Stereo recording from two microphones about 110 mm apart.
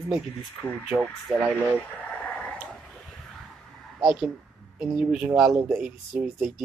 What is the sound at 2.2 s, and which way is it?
Radio, 15° left (ahead or behind).